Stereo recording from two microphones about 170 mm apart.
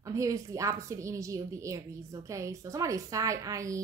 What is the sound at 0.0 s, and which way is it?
A woman's voice, 20° right (ahead or behind).